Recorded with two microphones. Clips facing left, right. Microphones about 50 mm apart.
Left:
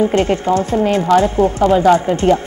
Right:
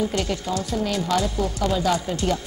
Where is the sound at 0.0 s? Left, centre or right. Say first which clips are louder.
Left 10 dB; left.